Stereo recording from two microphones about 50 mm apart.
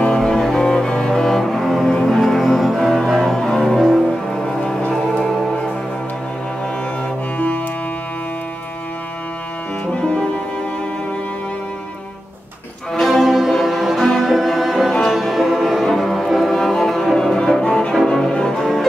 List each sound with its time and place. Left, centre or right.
0.0 s cello: centre
4.5 s music: centre
5.2 s music: centre
7.3 s music: left
9.9 s music: centre
13.0 s music: centre
16.5 s cello: centre
18.0 s music: centre